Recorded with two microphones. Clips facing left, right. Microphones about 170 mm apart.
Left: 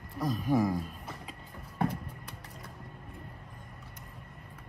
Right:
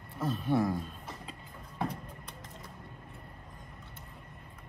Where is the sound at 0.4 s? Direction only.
15° left (ahead or behind).